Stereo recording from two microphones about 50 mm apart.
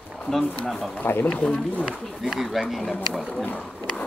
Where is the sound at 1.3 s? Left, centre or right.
Left.